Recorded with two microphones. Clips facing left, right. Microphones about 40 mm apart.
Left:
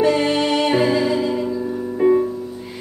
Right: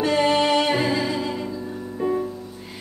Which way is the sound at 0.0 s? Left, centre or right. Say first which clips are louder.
Left 2 dB; centre.